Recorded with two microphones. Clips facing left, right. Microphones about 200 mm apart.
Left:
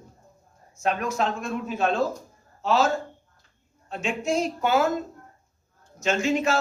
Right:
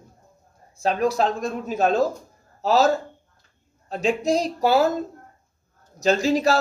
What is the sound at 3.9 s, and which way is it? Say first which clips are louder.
A man's voice: right 5 dB; 35° right (ahead or behind).